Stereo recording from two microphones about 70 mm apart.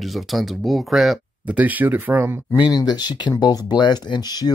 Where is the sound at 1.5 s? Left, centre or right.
Right.